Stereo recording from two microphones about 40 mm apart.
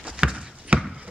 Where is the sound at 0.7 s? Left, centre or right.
Right.